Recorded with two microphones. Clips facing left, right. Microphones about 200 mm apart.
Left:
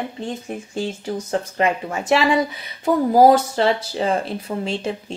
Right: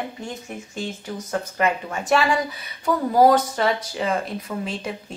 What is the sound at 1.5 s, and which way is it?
Speech, 25° left (ahead or behind).